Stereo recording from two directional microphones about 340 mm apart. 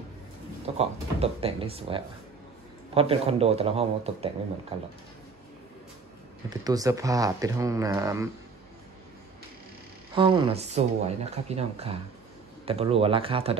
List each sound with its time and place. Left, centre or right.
0.7 s speech: centre
6.5 s speech: centre
10.1 s speech: centre